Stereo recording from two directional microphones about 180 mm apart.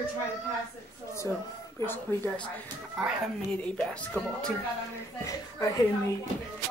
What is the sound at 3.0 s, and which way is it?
A woman's voice, 5° right (ahead or behind).